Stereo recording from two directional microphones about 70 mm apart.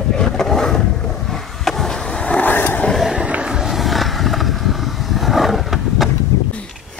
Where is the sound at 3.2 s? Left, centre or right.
Centre.